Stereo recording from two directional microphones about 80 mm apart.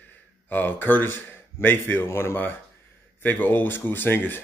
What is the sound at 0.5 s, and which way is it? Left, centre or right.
Speech, left.